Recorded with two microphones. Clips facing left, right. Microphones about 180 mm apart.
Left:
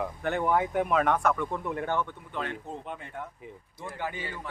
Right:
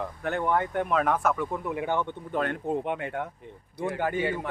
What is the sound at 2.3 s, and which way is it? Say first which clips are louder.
Speech: right 8 dB; 55° right (ahead or behind).